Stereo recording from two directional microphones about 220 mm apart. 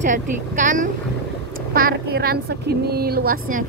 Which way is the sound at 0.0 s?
35° right (ahead or behind).